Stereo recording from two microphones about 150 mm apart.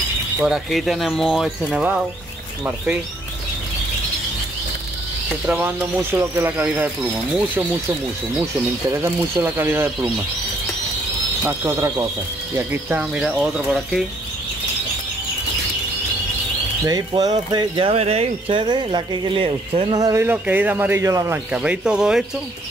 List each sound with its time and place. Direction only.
0.4 s speech: centre (ahead or behind)
5.3 s speech: 10° right (ahead or behind)
8.9 s speech: 15° right (ahead or behind)
11.4 s speech: 20° right (ahead or behind)
16.8 s speech: 25° right (ahead or behind)
20.0 s speech: 20° right (ahead or behind)
21.5 s speech: 5° right (ahead or behind)